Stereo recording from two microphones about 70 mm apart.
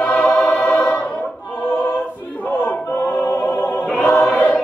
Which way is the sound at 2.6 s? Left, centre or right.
Left.